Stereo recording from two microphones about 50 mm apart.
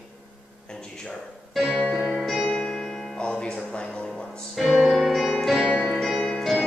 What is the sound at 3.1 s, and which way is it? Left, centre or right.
Music, centre.